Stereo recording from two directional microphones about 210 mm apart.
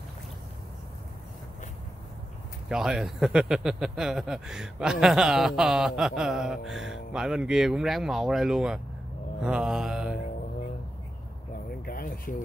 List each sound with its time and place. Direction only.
2.7 s speech: 5° right (ahead or behind)
9.4 s mantra: 5° right (ahead or behind)
11.8 s a sound: 40° left (ahead or behind)